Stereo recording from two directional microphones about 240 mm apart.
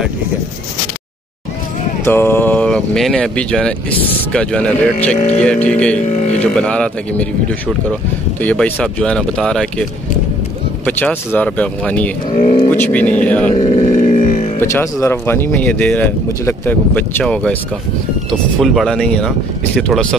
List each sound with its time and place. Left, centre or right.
2.0 s speech: centre
5.1 s speech: left
5.4 s speech: centre
5.9 s speech: left
6.4 s speech: centre
10.9 s speech: centre
13.5 s a sound: left
14.6 s speech: centre